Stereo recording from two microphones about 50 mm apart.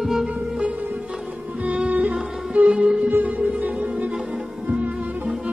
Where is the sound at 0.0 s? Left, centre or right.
Centre.